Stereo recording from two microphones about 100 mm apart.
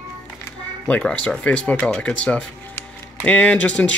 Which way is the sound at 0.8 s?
15° left (ahead or behind).